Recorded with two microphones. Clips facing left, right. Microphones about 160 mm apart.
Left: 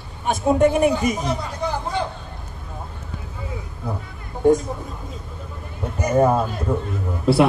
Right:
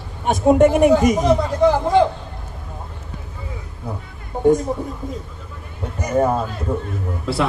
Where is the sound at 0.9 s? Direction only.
85° right.